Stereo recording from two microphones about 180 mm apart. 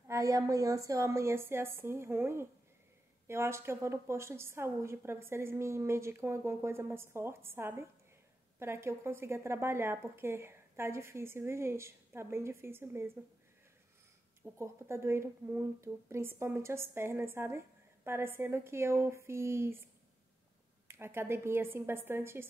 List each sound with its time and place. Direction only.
0.1 s a woman's voice: 20° right (ahead or behind)
14.4 s a woman's voice: 15° right (ahead or behind)
20.9 s a woman's voice: 15° right (ahead or behind)